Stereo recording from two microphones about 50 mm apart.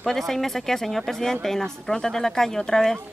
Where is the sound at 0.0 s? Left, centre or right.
Centre.